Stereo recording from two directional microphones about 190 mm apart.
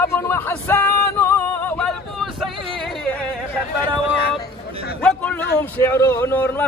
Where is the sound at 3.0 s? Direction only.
5° left (ahead or behind).